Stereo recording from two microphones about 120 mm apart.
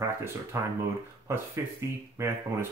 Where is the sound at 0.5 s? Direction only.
25° right (ahead or behind).